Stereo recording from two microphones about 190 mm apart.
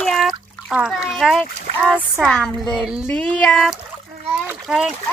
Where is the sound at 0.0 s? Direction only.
Centre (ahead or behind).